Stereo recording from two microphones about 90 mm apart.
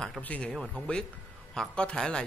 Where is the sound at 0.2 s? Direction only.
15° left (ahead or behind).